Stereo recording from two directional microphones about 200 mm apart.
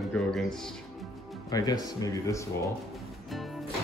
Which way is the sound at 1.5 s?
20° left (ahead or behind).